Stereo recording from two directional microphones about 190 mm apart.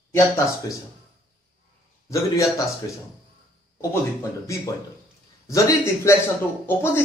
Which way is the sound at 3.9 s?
15° left (ahead or behind).